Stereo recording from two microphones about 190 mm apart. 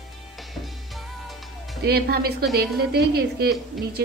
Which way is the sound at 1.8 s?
55° right (ahead or behind).